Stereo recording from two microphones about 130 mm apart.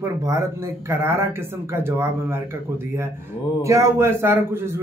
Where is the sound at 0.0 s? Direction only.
20° right (ahead or behind).